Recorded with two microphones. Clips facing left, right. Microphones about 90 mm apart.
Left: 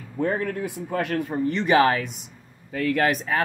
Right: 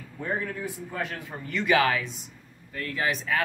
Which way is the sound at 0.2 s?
55° left (ahead or behind).